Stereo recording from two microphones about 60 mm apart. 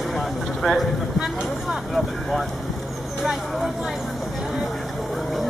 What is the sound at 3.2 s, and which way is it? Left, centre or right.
Speech, centre.